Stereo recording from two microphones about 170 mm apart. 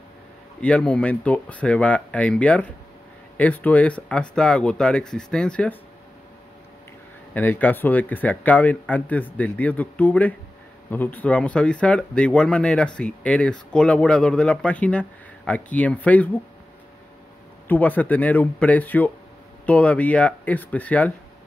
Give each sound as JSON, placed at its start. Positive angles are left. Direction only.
{"t": 0.6, "sound": "speech", "side_deg": 5}
{"t": 7.3, "sound": "speech", "side_deg": 10}
{"t": 17.6, "sound": "speech", "side_deg": 10}